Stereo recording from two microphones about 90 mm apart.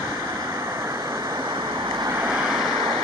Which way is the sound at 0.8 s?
35° right (ahead or behind).